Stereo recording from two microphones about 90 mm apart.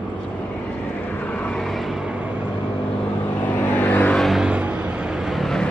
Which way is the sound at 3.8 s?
20° left (ahead or behind).